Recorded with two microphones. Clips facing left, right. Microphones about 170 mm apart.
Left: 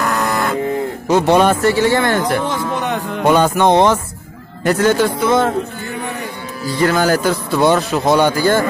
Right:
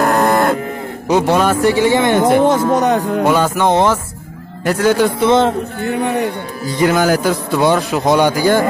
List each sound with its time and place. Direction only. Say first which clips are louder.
0.0 s cattle: right 5 dB; 55° right (ahead or behind)
1.0 s a man's voice: right 1 dB; 15° right (ahead or behind)
1.3 s music: left 4 dB; 5° right (ahead or behind)
1.6 s speech: right 2 dB; 15° right (ahead or behind)
2.4 s a man's voice: right 8 dB; 45° right (ahead or behind)
3.3 s music: left 4 dB; 5° right (ahead or behind)
4.6 s speech: right 1 dB; 10° right (ahead or behind)
5.2 s music: right 4 dB; 25° right (ahead or behind)
5.8 s a man's voice: right 8 dB; 65° right (ahead or behind)
6.6 s speech: right 1 dB; 15° right (ahead or behind)